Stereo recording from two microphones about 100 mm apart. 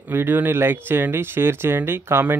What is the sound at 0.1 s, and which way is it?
Speech, 20° right (ahead or behind).